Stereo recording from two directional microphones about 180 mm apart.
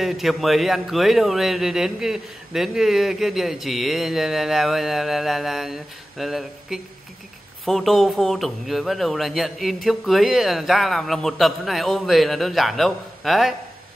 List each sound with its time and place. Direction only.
0.0 s speech: centre (ahead or behind)